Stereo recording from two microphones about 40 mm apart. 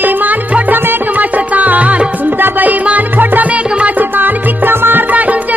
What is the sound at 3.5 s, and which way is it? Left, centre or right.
Music, right.